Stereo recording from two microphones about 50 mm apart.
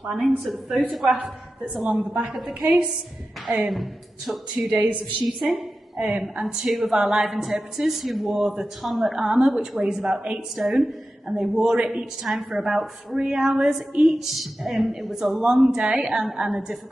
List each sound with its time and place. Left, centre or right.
0.0 s a woman's voice: centre
1.1 s a woman's voice: right
1.7 s a woman's voice: centre
4.6 s a woman's voice: right
5.2 s a woman's voice: centre
9.1 s a woman's voice: centre